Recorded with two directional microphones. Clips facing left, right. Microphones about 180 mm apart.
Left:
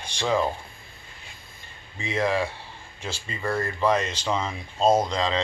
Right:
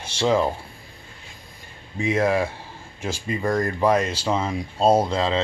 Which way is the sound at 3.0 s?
10° right (ahead or behind).